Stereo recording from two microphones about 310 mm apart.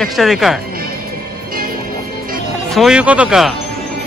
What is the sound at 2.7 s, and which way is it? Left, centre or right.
Speech, centre.